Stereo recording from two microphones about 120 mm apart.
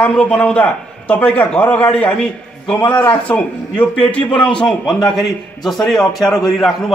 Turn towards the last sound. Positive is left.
turn(degrees=0)  # may be behind; listen again after turning